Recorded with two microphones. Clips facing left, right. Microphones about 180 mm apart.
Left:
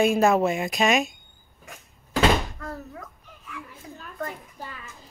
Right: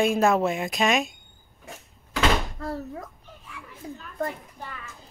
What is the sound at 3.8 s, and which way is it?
Speech, 30° right (ahead or behind).